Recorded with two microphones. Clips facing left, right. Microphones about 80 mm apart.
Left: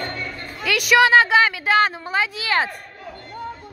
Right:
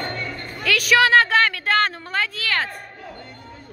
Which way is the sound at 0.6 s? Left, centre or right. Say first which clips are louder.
Left 1 dB; centre.